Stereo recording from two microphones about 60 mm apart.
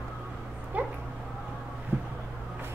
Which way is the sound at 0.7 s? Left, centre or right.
Right.